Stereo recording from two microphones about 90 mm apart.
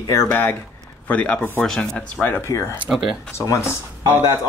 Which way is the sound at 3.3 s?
35° left (ahead or behind).